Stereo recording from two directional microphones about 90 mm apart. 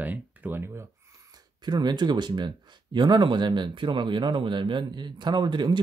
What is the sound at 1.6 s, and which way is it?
Speech, 50° right (ahead or behind).